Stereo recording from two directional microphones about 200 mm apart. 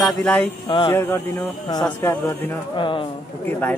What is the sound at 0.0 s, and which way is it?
Speech, 5° left (ahead or behind).